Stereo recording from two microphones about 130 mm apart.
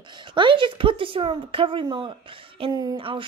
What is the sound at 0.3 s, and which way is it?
Speech, 40° right (ahead or behind).